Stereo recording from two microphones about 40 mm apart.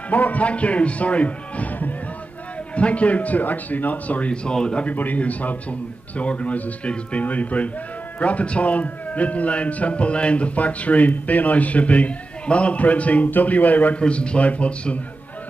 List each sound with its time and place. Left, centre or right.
0.1 s a man's voice: left
4.3 s a man's voice: left
4.8 s a man's voice: left
13.9 s a man's voice: left